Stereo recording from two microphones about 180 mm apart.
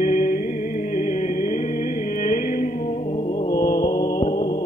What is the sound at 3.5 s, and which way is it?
Mantra, 50° left (ahead or behind).